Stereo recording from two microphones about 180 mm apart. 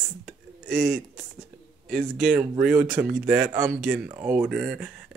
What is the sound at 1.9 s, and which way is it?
Speech, centre (ahead or behind).